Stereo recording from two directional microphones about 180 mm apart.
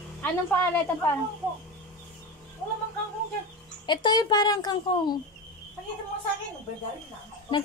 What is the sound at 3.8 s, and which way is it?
A child's voice, 25° left (ahead or behind).